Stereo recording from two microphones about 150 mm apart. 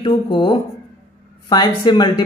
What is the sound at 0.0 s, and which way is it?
Speech, 35° left (ahead or behind).